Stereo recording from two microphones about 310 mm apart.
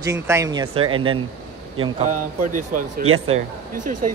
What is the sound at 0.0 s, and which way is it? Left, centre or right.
Speech, centre.